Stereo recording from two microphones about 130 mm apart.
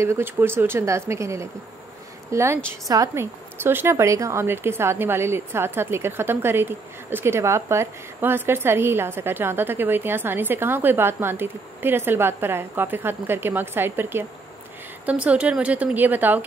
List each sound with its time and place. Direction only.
0.0 s a woman's voice: 20° right (ahead or behind)